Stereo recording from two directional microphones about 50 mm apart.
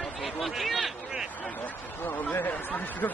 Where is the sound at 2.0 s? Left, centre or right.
Left.